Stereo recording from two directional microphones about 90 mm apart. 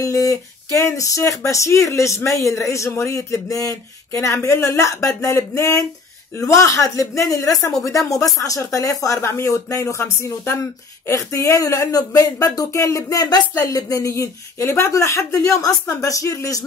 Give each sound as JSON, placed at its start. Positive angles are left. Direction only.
{"t": 0.0, "sound": "speech", "side_deg": 40}